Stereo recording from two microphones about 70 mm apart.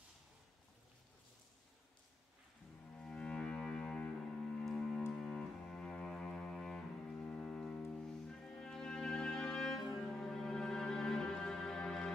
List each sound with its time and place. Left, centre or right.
3.0 s music: centre
5.1 s cello: centre